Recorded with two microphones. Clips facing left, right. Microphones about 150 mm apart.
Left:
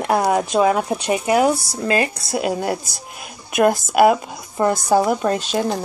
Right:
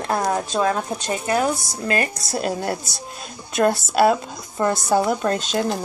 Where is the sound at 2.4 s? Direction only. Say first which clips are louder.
Left 3 dB; 10° left (ahead or behind).